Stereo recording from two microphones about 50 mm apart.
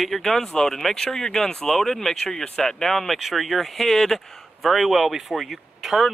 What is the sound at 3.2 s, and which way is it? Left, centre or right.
Speech, centre.